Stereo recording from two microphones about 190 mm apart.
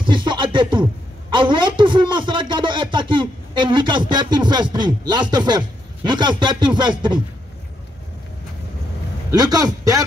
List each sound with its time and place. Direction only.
0.0 s music: 25° right (ahead or behind)
1.3 s a sound: 25° right (ahead or behind)
6.0 s speech: 25° right (ahead or behind)
9.3 s speech: 20° right (ahead or behind)